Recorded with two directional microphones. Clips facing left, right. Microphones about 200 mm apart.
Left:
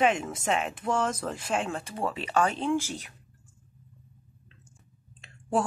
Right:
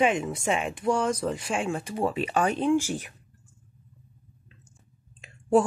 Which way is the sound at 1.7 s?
15° right (ahead or behind).